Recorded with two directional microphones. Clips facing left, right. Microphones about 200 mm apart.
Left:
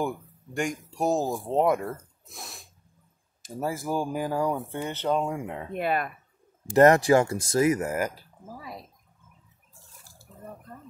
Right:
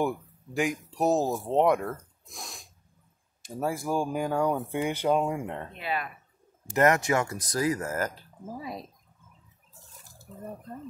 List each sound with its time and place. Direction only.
0.6 s speech: centre (ahead or behind)
4.6 s speech: 10° right (ahead or behind); by 5.7 s 5° left (ahead or behind)
5.7 s speech: 50° left (ahead or behind)
6.7 s speech: 35° left (ahead or behind); by 8.3 s 10° left (ahead or behind)
8.5 s speech: 20° right (ahead or behind)